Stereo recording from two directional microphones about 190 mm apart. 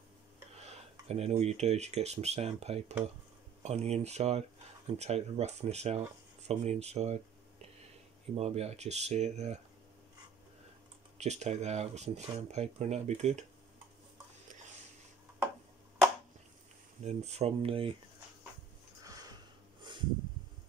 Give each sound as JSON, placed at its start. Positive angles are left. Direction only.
{"t": 0.6, "sound": "speech", "side_deg": -35}
{"t": 11.1, "sound": "speech", "side_deg": -35}
{"t": 17.0, "sound": "speech", "side_deg": -35}
{"t": 19.8, "sound": "a sound", "side_deg": -25}